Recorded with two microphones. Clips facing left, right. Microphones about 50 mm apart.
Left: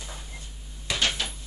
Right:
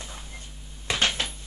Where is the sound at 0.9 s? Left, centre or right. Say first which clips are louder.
Right 2 dB; right.